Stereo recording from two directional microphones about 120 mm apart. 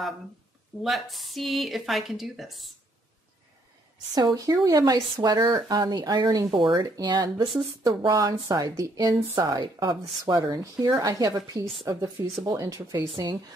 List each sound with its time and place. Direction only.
0.8 s speech: centre (ahead or behind)
4.1 s speech: 35° right (ahead or behind)
6.5 s speech: 40° right (ahead or behind); by 13.0 s 25° right (ahead or behind)